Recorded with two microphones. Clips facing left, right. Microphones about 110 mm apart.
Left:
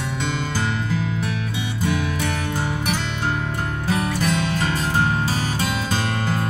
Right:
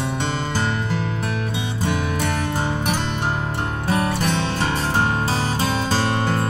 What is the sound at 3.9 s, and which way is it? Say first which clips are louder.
Music: right 1 dB; 35° right (ahead or behind).